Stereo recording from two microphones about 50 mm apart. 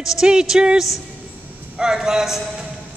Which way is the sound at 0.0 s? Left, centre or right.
Centre.